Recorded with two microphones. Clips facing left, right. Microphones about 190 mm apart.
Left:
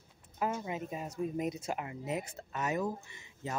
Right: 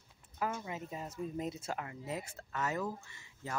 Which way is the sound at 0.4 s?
20° left (ahead or behind).